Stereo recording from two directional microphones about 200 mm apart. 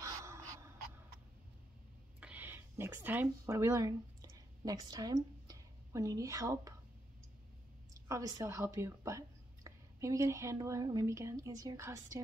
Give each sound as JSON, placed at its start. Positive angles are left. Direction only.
{"t": 0.0, "sound": "gasp", "side_deg": -15}
{"t": 2.1, "sound": "speech", "side_deg": -10}
{"t": 7.9, "sound": "speech", "side_deg": -15}